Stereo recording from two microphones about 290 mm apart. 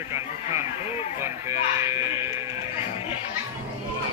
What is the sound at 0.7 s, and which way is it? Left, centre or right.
Speech, left.